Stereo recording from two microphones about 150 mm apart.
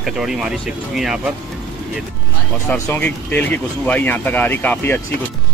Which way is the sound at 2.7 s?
15° left (ahead or behind).